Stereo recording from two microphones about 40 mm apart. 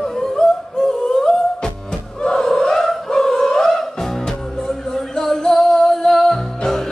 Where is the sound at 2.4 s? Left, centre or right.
Centre.